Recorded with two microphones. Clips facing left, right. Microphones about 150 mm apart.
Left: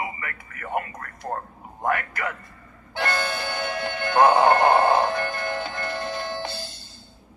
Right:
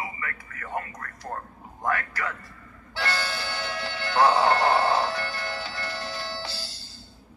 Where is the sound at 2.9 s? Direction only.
50° left (ahead or behind).